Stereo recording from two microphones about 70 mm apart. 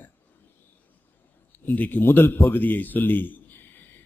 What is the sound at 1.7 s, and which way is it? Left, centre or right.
A man's voice, left.